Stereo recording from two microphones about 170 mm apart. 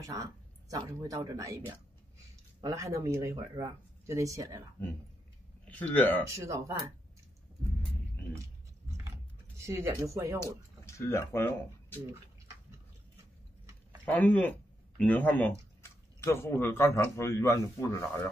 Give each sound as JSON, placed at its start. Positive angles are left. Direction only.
{"t": 0.0, "sound": "speech", "side_deg": -20}
{"t": 5.7, "sound": "a man's voice", "side_deg": 10}
{"t": 6.2, "sound": "speech", "side_deg": -15}
{"t": 9.7, "sound": "speech", "side_deg": -15}
{"t": 10.9, "sound": "speech", "side_deg": 15}
{"t": 14.0, "sound": "a man's voice", "side_deg": 10}